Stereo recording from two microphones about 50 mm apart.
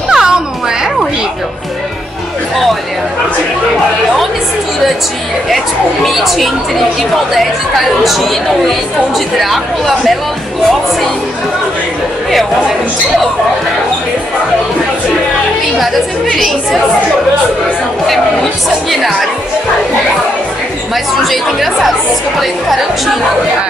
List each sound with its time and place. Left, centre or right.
0.1 s a sound: centre
6.0 s speech: centre
8.0 s speech: centre
9.4 s speech: centre
15.8 s speech: centre
18.0 s speech: centre
20.9 s speech: centre